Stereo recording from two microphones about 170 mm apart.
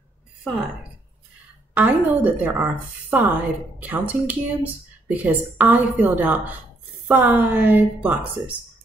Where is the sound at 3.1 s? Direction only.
10° right (ahead or behind).